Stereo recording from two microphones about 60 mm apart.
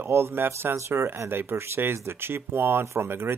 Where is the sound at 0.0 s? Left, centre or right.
Right.